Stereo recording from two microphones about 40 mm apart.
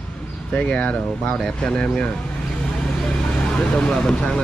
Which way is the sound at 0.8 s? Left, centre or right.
Left.